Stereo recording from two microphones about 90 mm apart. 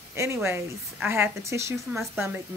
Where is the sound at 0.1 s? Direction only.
30° right (ahead or behind).